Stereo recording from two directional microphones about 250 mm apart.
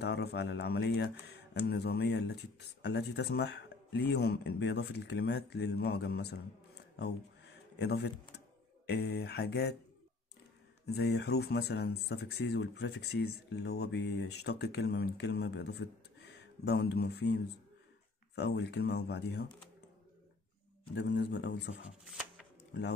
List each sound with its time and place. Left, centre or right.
0.0 s speech: left
7.0 s a sound: left
8.8 s speech: left
10.9 s speech: left
20.9 s speech: left